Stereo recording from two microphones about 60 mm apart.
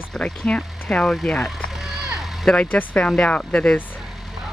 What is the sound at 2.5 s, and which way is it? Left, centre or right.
Speech, left.